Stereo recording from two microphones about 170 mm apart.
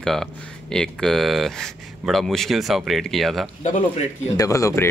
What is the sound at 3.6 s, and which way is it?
Speech, 45° left (ahead or behind).